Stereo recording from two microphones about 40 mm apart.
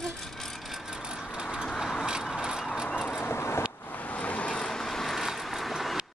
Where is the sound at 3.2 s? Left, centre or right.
Left.